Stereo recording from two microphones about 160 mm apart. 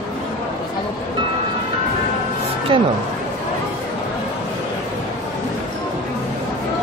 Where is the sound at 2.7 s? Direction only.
35° right (ahead or behind).